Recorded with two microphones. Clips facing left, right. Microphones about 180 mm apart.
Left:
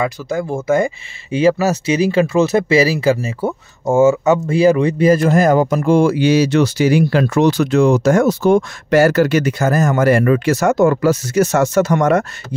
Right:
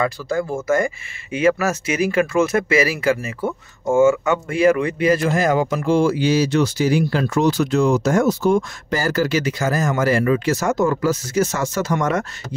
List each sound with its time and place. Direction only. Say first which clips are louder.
0.0 s speech: left 1 dB; 20° left (ahead or behind)
0.6 s speech: left 3 dB; 30° left (ahead or behind); by 12.3 s 65° left (ahead or behind)